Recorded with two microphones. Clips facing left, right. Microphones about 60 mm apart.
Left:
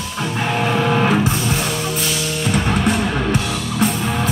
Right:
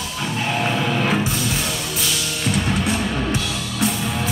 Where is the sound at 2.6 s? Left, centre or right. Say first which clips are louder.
Left 3 dB; left.